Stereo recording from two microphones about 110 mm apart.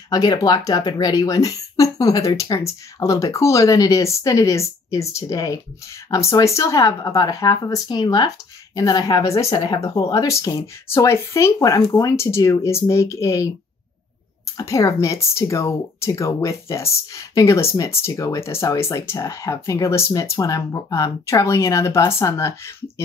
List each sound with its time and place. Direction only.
0.1 s speech: 35° left (ahead or behind)
14.6 s speech: 30° left (ahead or behind)